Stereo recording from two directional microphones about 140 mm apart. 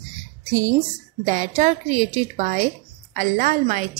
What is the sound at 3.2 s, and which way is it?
Speech, 70° right (ahead or behind).